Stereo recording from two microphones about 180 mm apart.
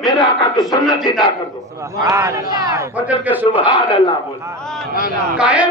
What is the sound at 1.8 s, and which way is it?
A man's voice, 15° right (ahead or behind).